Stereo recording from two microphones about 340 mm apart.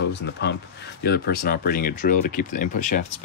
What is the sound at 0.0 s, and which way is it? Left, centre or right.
Speech, left.